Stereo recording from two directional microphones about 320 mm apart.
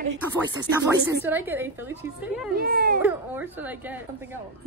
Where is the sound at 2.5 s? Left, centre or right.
Right.